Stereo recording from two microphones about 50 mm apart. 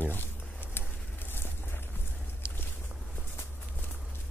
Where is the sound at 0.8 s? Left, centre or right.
Left.